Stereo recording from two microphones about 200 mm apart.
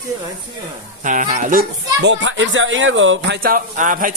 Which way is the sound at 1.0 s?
40° right (ahead or behind).